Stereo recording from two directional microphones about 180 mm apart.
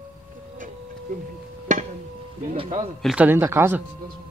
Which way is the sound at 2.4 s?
35° right (ahead or behind).